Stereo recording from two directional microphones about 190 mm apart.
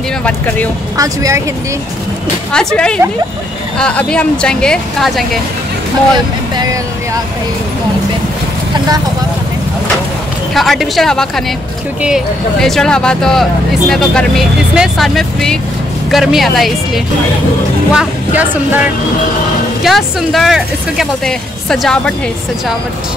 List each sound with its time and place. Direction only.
0.9 s speech: 15° right (ahead or behind)
2.5 s speech: 5° left (ahead or behind)
6.5 s speech: 20° right (ahead or behind)
10.5 s speech: centre (ahead or behind)